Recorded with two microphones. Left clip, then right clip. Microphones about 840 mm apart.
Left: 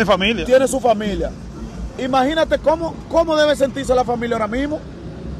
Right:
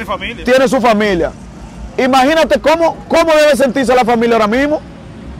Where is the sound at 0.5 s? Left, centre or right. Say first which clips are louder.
Right 5 dB; right.